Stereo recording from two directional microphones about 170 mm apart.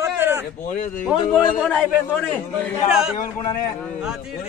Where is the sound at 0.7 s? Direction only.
50° left (ahead or behind).